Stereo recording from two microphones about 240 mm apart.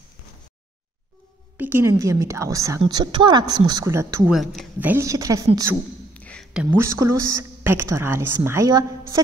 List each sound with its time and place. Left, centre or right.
1.6 s a woman's voice: centre
4.4 s a woman's voice: centre
6.1 s a woman's voice: centre